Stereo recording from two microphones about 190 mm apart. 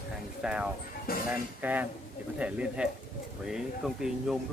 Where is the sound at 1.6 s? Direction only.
10° right (ahead or behind).